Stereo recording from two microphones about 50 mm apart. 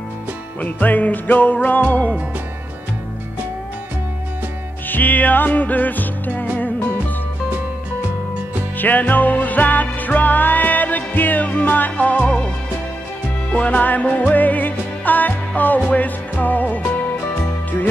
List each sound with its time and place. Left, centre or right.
0.6 s music: left
4.8 s music: left
8.7 s music: left
13.5 s music: left